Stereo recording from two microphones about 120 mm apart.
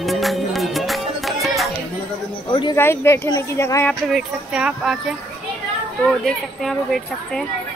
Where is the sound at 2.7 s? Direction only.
20° left (ahead or behind).